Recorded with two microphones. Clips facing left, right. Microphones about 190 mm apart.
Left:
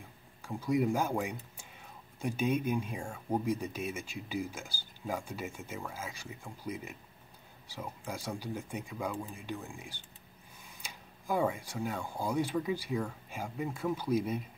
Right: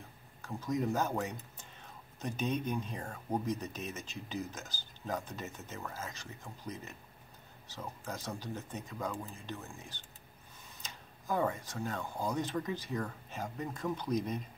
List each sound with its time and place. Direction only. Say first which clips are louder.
0.4 s speech: left 4 dB; 10° left (ahead or behind)